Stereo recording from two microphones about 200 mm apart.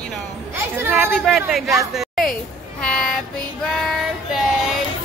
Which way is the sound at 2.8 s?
5° left (ahead or behind).